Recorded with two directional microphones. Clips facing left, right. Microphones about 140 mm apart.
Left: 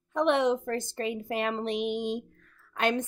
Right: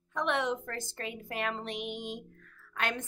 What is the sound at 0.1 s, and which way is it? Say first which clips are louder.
Speech: left 7 dB; 20° left (ahead or behind).